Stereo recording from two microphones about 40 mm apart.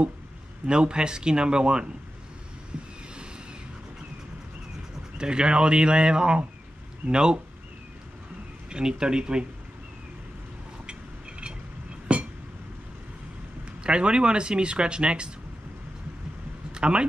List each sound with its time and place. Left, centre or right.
0.7 s speech: right
5.1 s speech: right
8.6 s speech: right
12.1 s chink: right
13.8 s speech: right
16.7 s a sound: right